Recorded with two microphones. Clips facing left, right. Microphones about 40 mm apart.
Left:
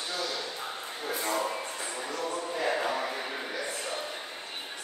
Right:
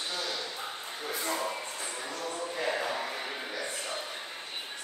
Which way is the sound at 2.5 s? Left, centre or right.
Centre.